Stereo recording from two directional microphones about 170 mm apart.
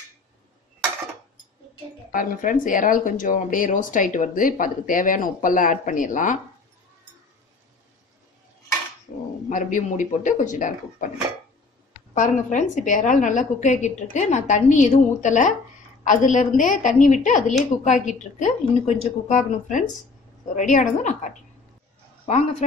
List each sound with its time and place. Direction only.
2.1 s speech: 50° left (ahead or behind)
9.5 s speech: 50° left (ahead or behind)
12.1 s speech: 45° left (ahead or behind)